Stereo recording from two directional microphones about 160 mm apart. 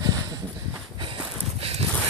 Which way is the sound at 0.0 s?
25° right (ahead or behind).